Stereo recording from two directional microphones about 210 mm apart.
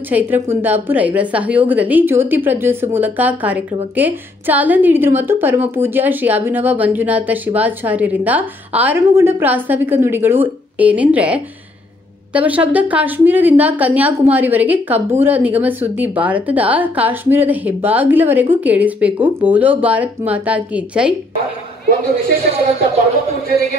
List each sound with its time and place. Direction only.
0.1 s a woman's voice: 10° right (ahead or behind)